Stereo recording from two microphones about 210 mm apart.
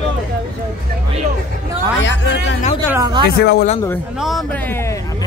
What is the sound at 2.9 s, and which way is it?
Speech, 20° right (ahead or behind).